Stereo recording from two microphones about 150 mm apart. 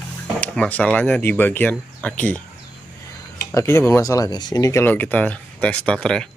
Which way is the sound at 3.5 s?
20° left (ahead or behind).